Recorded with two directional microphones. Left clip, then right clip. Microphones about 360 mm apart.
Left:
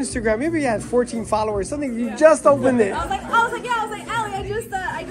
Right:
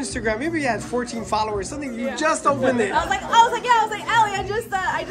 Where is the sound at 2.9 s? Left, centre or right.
Right.